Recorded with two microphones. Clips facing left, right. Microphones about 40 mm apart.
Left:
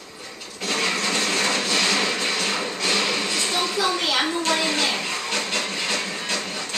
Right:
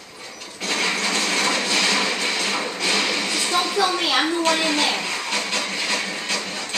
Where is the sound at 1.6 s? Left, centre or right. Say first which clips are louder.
Right 1 dB; centre.